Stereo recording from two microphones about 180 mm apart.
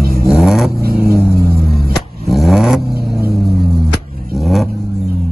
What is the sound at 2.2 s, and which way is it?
Vehicle, centre (ahead or behind).